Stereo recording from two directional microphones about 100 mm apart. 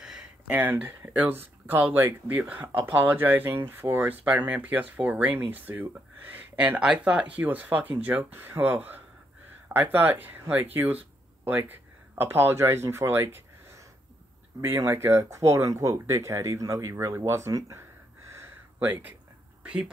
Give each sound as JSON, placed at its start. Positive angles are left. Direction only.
{"t": 0.5, "sound": "speech", "side_deg": -20}
{"t": 17.2, "sound": "a sound", "side_deg": -35}
{"t": 19.6, "sound": "speech", "side_deg": -10}